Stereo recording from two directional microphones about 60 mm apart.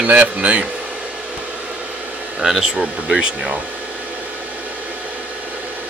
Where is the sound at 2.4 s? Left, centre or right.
Centre.